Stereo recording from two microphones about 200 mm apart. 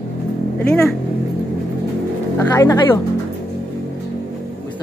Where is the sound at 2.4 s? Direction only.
15° left (ahead or behind).